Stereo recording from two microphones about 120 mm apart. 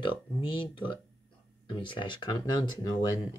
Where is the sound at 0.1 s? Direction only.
45° left (ahead or behind).